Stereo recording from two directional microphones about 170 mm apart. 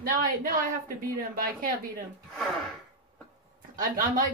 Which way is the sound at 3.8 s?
55° right (ahead or behind).